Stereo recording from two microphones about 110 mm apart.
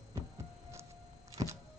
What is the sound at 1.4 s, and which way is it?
Power windows, 30° right (ahead or behind).